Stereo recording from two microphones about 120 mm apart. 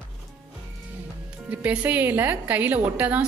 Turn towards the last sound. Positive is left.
turn(degrees=-15)  # may be behind; listen again after turning